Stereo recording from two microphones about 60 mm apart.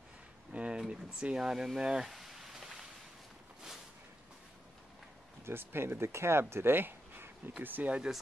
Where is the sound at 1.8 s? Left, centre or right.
Centre.